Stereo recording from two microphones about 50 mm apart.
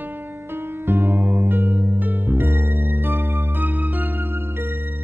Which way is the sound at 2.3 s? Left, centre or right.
Right.